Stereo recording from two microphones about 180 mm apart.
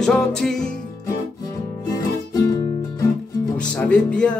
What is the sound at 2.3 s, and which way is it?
Music, 20° left (ahead or behind).